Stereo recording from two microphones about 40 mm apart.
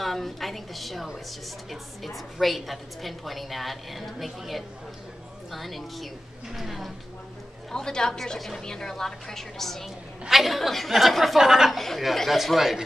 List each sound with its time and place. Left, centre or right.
0.0 s a woman's voice: centre
7.7 s a woman's voice: centre
10.3 s a woman's voice: centre
11.7 s a woman's voice: centre